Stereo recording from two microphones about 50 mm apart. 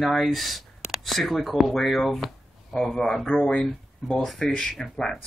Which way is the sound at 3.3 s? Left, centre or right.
Left.